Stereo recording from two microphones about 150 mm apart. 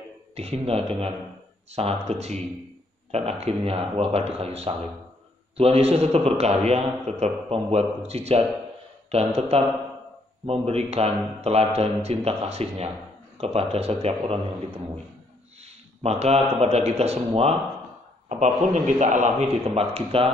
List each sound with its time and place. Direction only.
0.3 s a man's voice: 45° right (ahead or behind)
16.0 s a man's voice: 45° right (ahead or behind)
18.9 s a man's voice: 55° right (ahead or behind)